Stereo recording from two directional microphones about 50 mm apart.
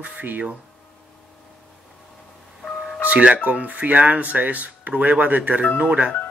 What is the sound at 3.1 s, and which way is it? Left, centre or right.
Speech, right.